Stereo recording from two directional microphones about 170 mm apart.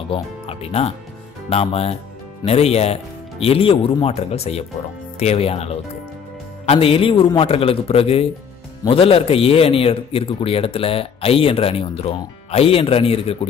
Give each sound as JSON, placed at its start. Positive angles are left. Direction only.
{"t": 0.1, "sound": "a man's voice", "side_deg": 35}